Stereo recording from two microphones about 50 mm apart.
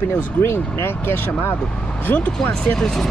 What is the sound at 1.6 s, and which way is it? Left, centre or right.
Speech, centre.